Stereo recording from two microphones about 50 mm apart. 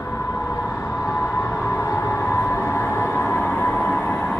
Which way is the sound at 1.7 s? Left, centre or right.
Left.